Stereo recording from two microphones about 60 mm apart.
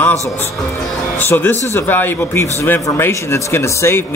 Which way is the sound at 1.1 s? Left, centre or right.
Left.